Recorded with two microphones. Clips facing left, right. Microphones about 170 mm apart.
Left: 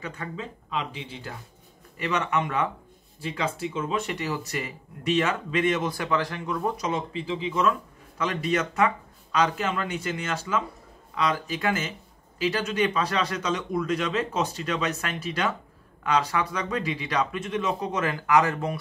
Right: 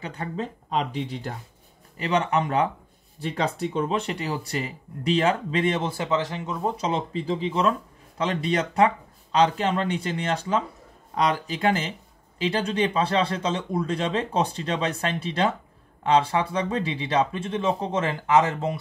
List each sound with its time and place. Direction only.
0.0 s speech: 35° right (ahead or behind)